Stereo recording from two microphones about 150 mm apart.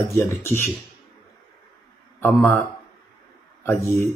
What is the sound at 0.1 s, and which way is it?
Speech, 15° left (ahead or behind).